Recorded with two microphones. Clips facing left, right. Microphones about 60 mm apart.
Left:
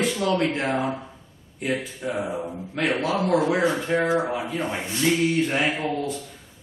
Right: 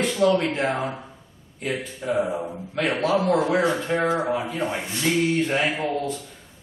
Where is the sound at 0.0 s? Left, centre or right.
Centre.